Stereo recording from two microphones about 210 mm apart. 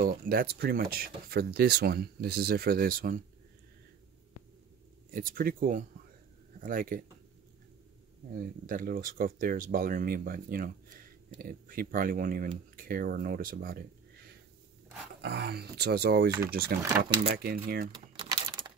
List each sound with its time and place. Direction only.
0.0 s speech: 40° right (ahead or behind)
5.1 s speech: 40° right (ahead or behind)
8.4 s speech: 40° right (ahead or behind)
15.2 s speech: 50° right (ahead or behind)
17.9 s typing: 25° right (ahead or behind)